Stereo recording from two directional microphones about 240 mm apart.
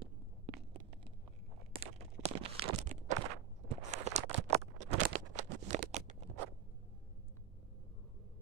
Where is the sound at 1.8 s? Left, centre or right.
Right.